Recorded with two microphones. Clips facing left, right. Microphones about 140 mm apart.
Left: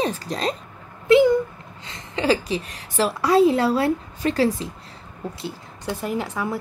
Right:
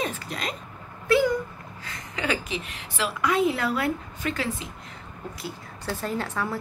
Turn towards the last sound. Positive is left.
turn(degrees=10)  # may be behind; listen again after turning